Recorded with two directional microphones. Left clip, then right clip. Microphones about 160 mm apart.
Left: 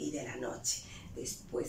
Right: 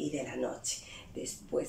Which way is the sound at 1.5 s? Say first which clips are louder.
Right 4 dB; 10° right (ahead or behind).